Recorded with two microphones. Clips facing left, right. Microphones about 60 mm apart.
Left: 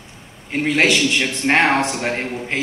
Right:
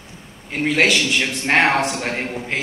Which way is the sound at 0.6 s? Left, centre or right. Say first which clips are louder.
Left 1 dB; centre.